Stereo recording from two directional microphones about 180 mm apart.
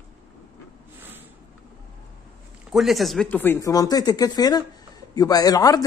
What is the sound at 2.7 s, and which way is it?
A man's voice, centre (ahead or behind).